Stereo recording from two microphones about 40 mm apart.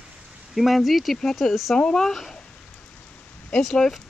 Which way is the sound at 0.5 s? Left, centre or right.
Centre.